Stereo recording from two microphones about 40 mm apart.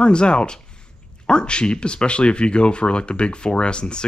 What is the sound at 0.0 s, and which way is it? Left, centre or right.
Speech, left.